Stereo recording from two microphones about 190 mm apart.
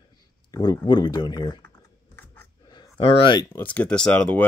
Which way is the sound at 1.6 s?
10° left (ahead or behind).